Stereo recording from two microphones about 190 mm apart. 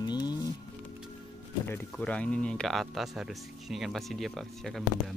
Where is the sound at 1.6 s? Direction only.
10° left (ahead or behind).